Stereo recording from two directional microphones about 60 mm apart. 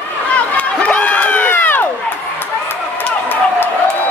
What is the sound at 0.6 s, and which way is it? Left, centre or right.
Run, left.